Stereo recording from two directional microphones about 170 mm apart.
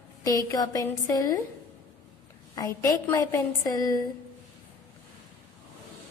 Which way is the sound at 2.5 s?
20° left (ahead or behind).